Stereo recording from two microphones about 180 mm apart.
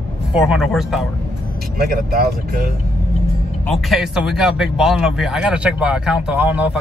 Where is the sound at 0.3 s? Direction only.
5° right (ahead or behind).